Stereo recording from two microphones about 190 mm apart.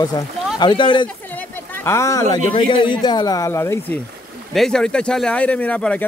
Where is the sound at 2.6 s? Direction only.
25° left (ahead or behind).